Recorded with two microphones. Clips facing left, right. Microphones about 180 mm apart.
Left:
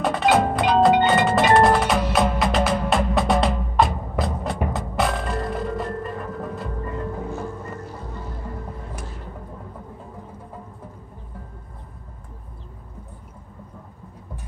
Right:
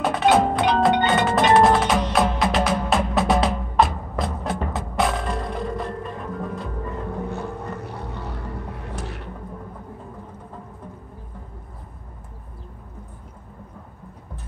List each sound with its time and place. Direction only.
0.0 s wood block: centre (ahead or behind)
4.7 s music: centre (ahead or behind)
7.2 s music: 65° right (ahead or behind)